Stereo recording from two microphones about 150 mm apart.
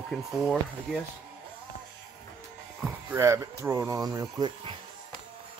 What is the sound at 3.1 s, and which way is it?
Speech, 20° right (ahead or behind).